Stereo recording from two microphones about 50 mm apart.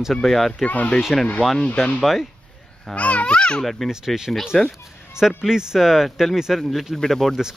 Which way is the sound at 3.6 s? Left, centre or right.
Centre.